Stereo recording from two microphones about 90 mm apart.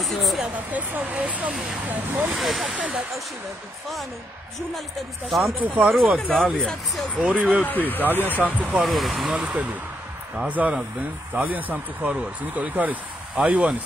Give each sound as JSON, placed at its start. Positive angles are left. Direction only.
{"t": 0.0, "sound": "speech", "side_deg": 0}
{"t": 0.7, "sound": "speech", "side_deg": -15}
{"t": 2.3, "sound": "speech", "side_deg": 0}
{"t": 2.7, "sound": "speech", "side_deg": -15}
{"t": 5.6, "sound": "speech", "side_deg": -15}
{"t": 5.9, "sound": "speech", "side_deg": -5}
{"t": 7.2, "sound": "speech", "side_deg": -15}
{"t": 7.6, "sound": "speech", "side_deg": 20}
{"t": 8.4, "sound": "speech", "side_deg": -20}
{"t": 8.7, "sound": "speech", "side_deg": 0}
{"t": 9.3, "sound": "speech", "side_deg": -10}